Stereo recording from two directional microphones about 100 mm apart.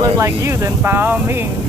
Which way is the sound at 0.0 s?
30° right (ahead or behind).